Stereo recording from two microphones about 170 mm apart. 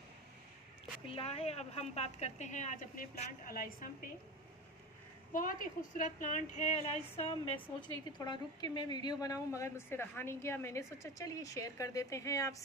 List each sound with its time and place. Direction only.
1.0 s a woman's voice: 35° left (ahead or behind); by 3.7 s 55° left (ahead or behind)
5.3 s a woman's voice: 55° left (ahead or behind); by 7.6 s 35° left (ahead or behind)
8.2 s a woman's voice: 25° left (ahead or behind)